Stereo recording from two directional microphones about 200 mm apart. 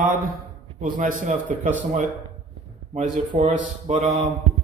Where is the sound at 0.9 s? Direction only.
40° right (ahead or behind).